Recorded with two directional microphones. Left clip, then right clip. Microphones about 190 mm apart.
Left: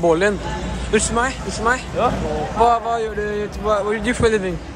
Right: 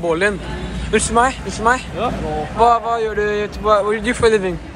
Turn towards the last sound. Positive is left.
turn(degrees=10)  # may be behind; listen again after turning